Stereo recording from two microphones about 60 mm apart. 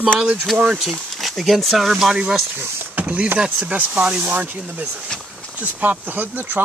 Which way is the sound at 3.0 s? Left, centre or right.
Right.